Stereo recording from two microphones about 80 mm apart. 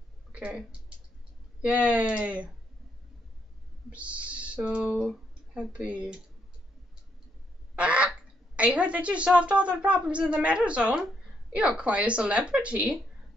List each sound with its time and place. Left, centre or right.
0.3 s a woman's voice: centre
3.9 s speech: centre
4.8 s speech: centre
5.8 s a woman's voice: centre
7.7 s goose: centre
8.5 s a woman's voice: centre